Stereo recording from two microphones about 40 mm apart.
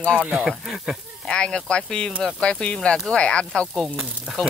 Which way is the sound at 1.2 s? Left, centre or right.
Left.